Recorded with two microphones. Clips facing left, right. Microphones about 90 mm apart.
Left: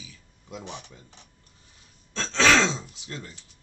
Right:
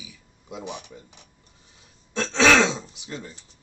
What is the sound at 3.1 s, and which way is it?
Speech, 20° right (ahead or behind).